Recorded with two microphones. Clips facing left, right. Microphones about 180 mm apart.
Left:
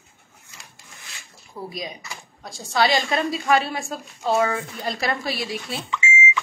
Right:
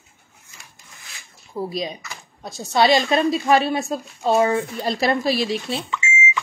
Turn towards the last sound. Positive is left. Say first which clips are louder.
# even
turn(degrees=-45)  # may be behind; listen again after turning